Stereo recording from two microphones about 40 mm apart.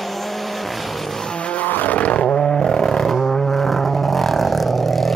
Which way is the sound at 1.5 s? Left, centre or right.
Left.